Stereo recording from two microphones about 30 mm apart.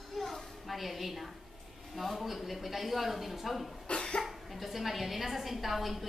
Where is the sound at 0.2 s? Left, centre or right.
Centre.